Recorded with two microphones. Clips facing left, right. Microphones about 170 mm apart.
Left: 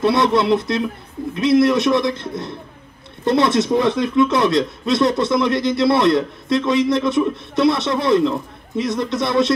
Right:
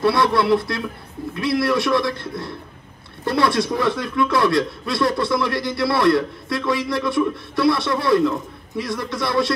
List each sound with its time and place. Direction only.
0.0 s a man's voice: 20° left (ahead or behind)